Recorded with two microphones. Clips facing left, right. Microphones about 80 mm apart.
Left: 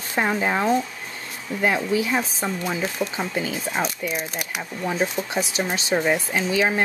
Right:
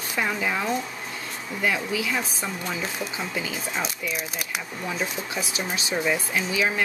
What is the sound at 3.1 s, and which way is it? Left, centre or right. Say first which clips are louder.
Speech: left 4 dB; left.